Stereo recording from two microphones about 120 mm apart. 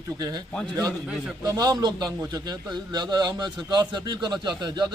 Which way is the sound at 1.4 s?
35° right (ahead or behind).